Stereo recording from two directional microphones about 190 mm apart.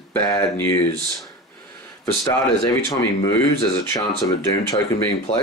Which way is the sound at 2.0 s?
20° left (ahead or behind).